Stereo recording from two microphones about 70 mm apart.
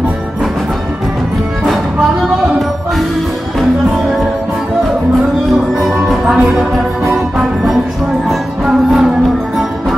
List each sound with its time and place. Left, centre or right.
5.9 s music: centre